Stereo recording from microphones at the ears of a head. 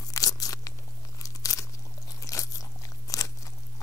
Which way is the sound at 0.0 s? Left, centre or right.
Left.